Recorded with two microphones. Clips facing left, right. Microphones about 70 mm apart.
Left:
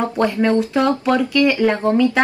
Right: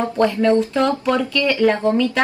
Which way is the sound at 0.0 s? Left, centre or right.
Left.